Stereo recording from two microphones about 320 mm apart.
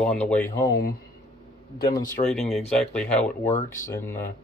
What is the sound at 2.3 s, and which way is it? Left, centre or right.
Speech, centre.